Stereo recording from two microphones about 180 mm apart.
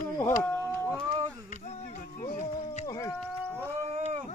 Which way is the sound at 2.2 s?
45° left (ahead or behind).